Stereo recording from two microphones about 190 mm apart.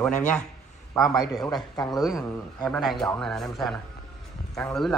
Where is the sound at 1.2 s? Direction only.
20° left (ahead or behind).